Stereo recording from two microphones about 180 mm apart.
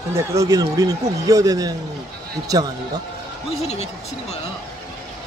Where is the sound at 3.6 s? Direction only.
35° left (ahead or behind).